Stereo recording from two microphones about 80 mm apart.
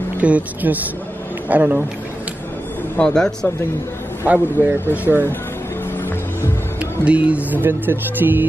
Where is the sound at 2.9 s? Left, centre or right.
Centre.